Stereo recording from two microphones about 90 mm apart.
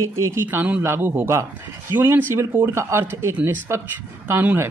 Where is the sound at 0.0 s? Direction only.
35° right (ahead or behind).